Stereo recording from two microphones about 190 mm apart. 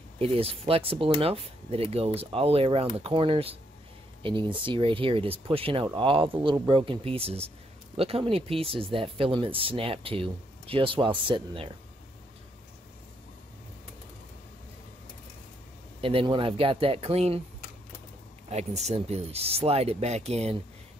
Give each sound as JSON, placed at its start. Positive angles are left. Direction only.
{"t": 0.2, "sound": "speech", "side_deg": -30}
{"t": 16.0, "sound": "speech", "side_deg": -30}
{"t": 18.5, "sound": "speech", "side_deg": -35}